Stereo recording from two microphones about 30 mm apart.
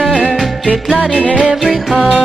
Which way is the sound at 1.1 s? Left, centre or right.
Left.